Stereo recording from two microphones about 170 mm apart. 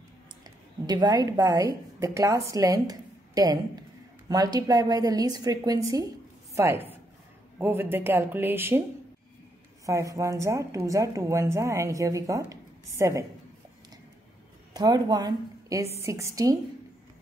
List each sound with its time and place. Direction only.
0.4 s a woman's voice: 25° right (ahead or behind)
9.8 s a woman's voice: 20° right (ahead or behind)
14.7 s a woman's voice: 25° right (ahead or behind)